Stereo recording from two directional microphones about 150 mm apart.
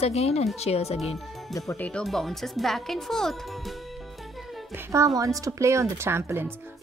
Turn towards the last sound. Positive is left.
turn(degrees=-15)  # may be behind; listen again after turning